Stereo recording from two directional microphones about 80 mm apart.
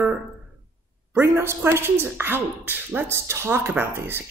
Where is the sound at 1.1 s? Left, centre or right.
Right.